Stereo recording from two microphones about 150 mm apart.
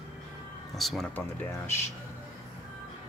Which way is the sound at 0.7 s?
Centre (ahead or behind).